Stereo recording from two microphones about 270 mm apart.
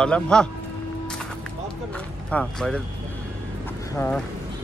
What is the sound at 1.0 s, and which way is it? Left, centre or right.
Music, centre.